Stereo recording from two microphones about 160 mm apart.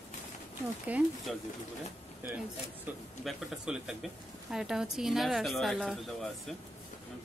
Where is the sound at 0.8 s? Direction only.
10° right (ahead or behind).